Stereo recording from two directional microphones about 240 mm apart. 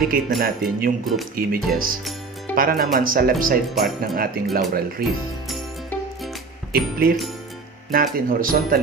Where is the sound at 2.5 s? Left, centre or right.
Right.